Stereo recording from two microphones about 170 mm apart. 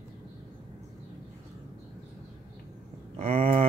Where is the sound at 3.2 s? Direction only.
35° right (ahead or behind).